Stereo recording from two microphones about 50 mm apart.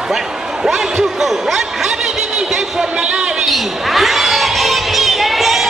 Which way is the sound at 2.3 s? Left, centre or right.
Centre.